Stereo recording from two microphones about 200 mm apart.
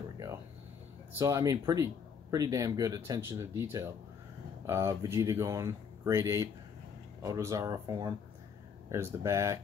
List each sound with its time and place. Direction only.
1.1 s speech: 15° right (ahead or behind)